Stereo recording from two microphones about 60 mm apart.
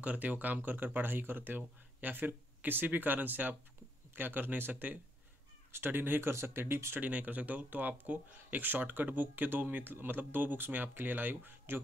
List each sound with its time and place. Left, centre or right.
0.0 s speech: right
7.0 s speech: right